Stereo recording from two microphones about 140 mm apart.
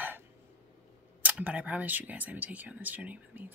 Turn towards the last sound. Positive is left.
turn(degrees=-10)  # may be behind; listen again after turning